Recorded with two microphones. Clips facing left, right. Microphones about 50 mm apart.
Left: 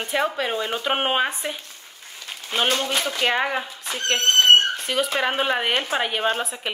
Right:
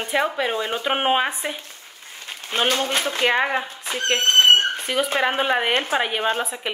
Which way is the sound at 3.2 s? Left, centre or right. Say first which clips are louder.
Right 3 dB; centre.